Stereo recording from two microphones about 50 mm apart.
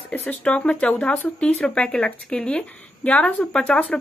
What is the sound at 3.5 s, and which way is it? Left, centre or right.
Speech, centre.